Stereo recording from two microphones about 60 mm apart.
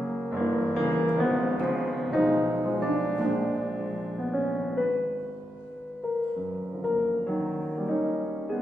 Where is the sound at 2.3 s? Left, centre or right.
Right.